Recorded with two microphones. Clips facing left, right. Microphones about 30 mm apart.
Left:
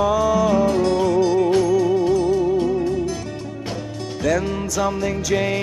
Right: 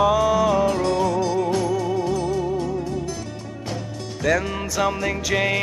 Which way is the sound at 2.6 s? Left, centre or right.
Left.